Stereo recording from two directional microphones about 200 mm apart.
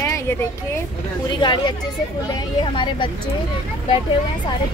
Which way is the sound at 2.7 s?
25° left (ahead or behind).